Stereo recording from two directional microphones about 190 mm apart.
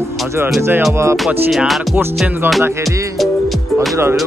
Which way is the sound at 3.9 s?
15° right (ahead or behind).